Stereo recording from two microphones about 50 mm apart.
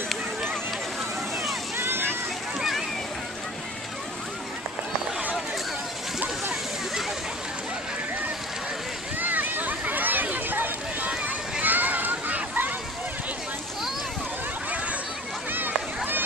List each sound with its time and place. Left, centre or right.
1.8 s boat: right
9.2 s a sound: right
11.6 s water: right